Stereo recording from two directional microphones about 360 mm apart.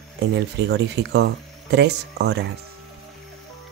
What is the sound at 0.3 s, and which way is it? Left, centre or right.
Speech, right.